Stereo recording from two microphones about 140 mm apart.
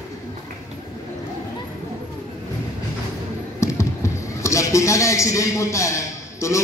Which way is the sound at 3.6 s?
20° left (ahead or behind).